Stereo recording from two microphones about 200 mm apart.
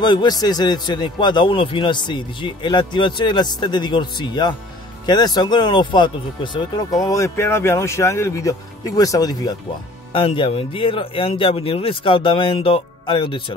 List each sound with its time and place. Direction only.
0.0 s a man's voice: 20° left (ahead or behind)